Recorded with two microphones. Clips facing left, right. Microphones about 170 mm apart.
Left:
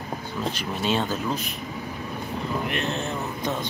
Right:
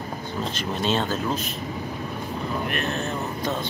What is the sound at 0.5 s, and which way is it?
Speech, 10° left (ahead or behind).